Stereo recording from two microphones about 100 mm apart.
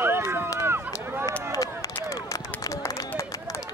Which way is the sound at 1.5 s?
35° left (ahead or behind).